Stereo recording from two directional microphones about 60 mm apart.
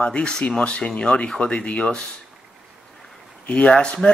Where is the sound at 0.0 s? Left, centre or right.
Centre.